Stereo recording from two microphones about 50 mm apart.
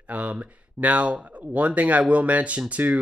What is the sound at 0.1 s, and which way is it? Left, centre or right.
Speech, right.